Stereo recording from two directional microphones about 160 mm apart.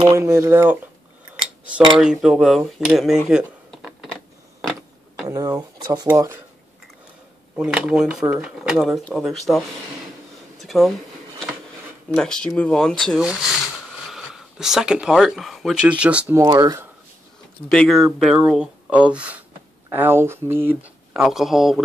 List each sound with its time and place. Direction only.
0.1 s speech: 15° right (ahead or behind)
2.0 s speech: 5° right (ahead or behind)
3.3 s a sound: 5° right (ahead or behind)
4.6 s mechanisms: centre (ahead or behind)
5.2 s speech: 20° right (ahead or behind)
7.5 s speech: 5° right (ahead or behind)
10.6 s a sound: centre (ahead or behind)
12.2 s speech: 5° left (ahead or behind)
16.3 s speech: 25° right (ahead or behind)
17.6 s speech: centre (ahead or behind)